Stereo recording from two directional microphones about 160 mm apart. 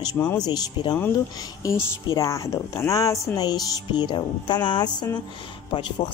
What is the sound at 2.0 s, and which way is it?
A woman's voice, 20° left (ahead or behind).